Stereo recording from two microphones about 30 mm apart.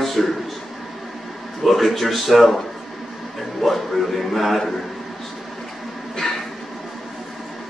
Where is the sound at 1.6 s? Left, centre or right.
Centre.